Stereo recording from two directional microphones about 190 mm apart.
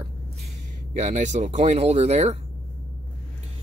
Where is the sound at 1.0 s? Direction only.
40° right (ahead or behind).